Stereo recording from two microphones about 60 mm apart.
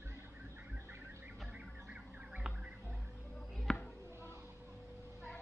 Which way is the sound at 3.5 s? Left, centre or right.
Centre.